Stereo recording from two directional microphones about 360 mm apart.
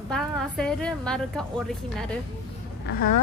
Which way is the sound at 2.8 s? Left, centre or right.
Left.